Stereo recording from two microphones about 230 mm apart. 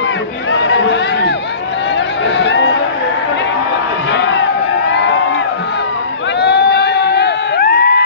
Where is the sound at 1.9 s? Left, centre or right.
Left.